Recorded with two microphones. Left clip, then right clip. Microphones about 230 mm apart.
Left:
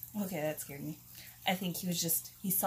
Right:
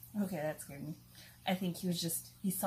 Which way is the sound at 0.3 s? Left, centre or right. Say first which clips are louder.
Left 4 dB; centre.